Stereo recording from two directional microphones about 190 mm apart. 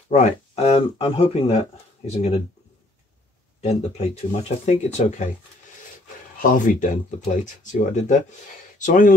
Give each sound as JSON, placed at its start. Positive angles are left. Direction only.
{"t": 0.1, "sound": "speech", "side_deg": 35}
{"t": 3.6, "sound": "speech", "side_deg": 35}
{"t": 6.4, "sound": "speech", "side_deg": 45}